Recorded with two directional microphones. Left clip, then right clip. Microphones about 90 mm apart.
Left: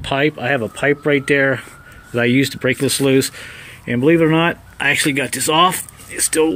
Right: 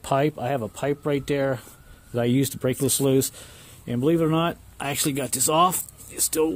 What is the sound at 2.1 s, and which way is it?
Speech, 40° right (ahead or behind).